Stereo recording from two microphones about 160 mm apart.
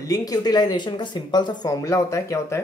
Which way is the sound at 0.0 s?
20° left (ahead or behind).